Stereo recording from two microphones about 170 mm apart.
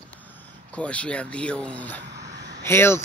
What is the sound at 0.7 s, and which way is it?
Speech, 5° left (ahead or behind).